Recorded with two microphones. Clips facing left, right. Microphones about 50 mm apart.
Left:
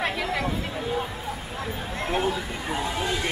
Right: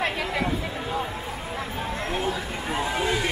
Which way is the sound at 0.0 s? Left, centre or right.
Centre.